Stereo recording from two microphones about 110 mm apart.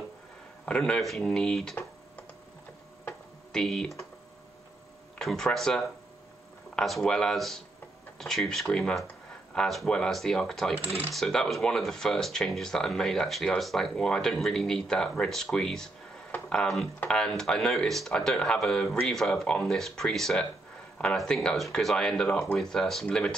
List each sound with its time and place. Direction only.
0.7 s speech: 10° left (ahead or behind)
3.5 s speech: 5° left (ahead or behind)
5.2 s speech: 5° left (ahead or behind)